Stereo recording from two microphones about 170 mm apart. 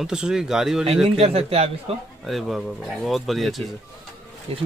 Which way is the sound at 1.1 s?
35° right (ahead or behind).